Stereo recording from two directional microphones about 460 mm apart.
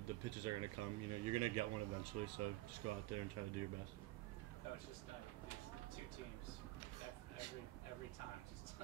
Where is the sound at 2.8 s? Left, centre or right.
Right.